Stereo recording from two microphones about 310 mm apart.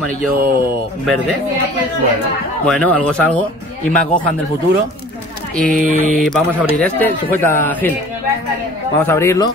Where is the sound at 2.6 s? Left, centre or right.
Centre.